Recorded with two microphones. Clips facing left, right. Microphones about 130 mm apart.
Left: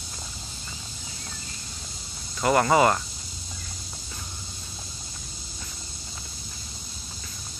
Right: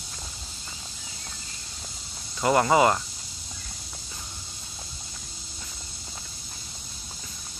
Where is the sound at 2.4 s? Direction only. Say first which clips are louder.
Even; 20° right (ahead or behind).